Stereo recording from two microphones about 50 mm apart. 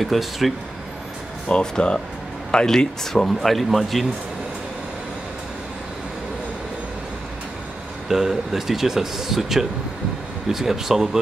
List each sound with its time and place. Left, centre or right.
0.0 s speech: centre
1.5 s speech: centre
8.1 s speech: centre